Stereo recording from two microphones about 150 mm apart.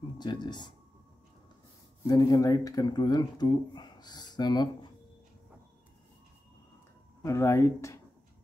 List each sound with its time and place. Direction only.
0.2 s speech: 30° left (ahead or behind)
2.0 s speech: 25° left (ahead or behind)
7.2 s speech: 20° left (ahead or behind)